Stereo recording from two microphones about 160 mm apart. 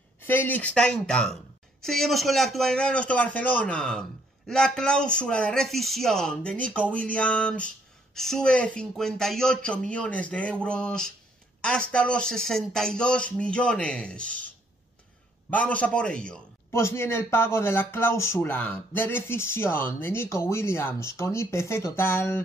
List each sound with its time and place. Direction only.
0.2 s speech: 15° left (ahead or behind)
15.5 s speech: 10° left (ahead or behind)
16.7 s speech: 15° left (ahead or behind)